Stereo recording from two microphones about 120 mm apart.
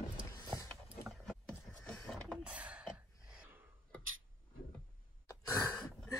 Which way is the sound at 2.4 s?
10° right (ahead or behind).